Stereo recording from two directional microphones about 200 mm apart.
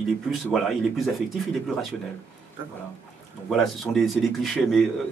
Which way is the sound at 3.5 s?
Centre (ahead or behind).